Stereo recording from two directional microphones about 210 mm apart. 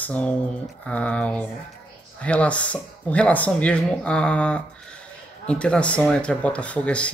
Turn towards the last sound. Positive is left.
turn(degrees=5)  # may be behind; listen again after turning